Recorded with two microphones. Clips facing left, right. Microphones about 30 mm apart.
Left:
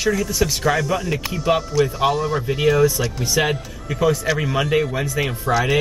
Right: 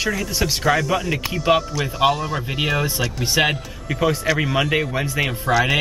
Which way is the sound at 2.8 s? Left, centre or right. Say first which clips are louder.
Left 3 dB; right.